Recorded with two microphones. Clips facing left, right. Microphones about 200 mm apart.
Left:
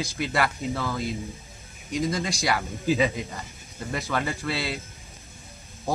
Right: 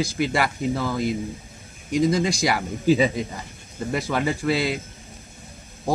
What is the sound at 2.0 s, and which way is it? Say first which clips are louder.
Speech: right 5 dB; 15° right (ahead or behind).